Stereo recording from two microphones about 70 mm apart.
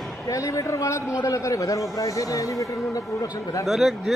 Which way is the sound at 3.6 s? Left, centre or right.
Centre.